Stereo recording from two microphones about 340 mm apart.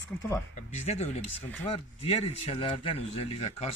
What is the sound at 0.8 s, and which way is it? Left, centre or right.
Speech, centre.